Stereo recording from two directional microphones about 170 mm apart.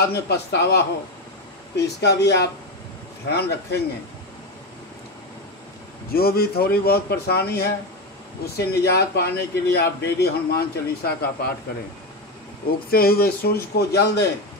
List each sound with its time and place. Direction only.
0.1 s a man's voice: 75° left (ahead or behind)
6.1 s a man's voice: 65° left (ahead or behind)
12.9 s a man's voice: 65° left (ahead or behind)